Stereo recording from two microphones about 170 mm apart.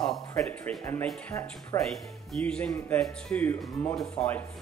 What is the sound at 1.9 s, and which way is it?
Speech, 5° left (ahead or behind).